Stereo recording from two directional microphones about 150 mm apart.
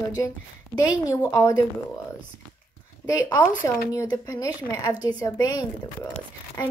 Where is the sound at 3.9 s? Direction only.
20° left (ahead or behind).